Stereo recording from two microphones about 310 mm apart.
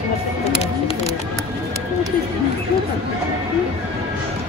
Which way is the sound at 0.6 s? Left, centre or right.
Centre.